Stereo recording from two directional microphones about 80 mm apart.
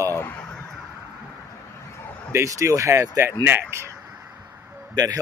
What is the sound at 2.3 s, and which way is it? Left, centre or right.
Speech, right.